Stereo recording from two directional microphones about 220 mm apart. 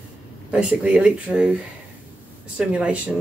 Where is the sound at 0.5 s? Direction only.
5° right (ahead or behind).